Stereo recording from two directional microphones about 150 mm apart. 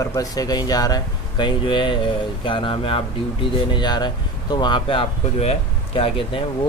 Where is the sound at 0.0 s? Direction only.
25° left (ahead or behind).